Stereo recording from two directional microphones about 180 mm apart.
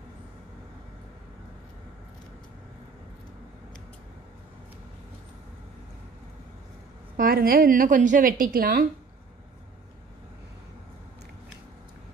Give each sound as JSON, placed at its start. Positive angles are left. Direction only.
{"t": 7.2, "sound": "a woman's voice", "side_deg": -55}